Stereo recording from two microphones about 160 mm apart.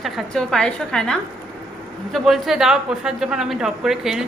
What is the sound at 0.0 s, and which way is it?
A woman's voice, centre (ahead or behind).